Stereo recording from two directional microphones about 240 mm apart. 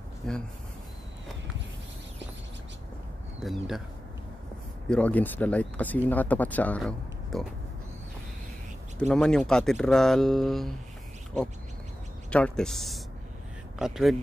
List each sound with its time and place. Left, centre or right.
0.3 s speech: centre
3.3 s speech: centre
4.8 s speech: centre
9.0 s speech: centre
12.3 s speech: centre